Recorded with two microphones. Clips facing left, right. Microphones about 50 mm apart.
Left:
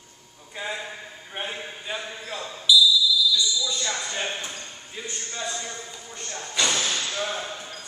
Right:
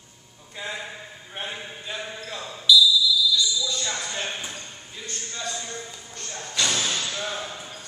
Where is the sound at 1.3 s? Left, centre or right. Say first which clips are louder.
Left 1 dB; centre.